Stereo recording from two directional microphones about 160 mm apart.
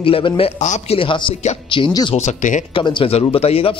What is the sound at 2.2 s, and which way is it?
Speech, 50° left (ahead or behind).